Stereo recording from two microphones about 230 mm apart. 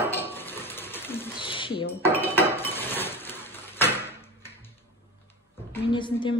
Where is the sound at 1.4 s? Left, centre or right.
Left.